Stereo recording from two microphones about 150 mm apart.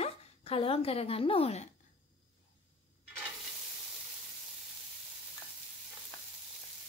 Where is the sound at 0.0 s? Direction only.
40° left (ahead or behind).